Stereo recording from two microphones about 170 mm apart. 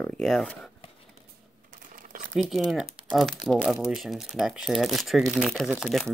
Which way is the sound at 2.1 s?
55° right (ahead or behind).